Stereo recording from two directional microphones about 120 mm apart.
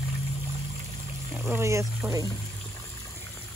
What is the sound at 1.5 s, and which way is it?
Speech, 25° right (ahead or behind).